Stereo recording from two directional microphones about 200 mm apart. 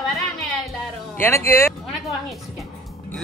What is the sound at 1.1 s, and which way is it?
Speech, 10° left (ahead or behind).